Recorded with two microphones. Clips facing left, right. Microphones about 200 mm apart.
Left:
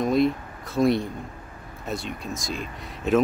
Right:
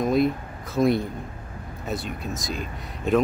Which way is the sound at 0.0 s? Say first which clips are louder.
Even; centre (ahead or behind).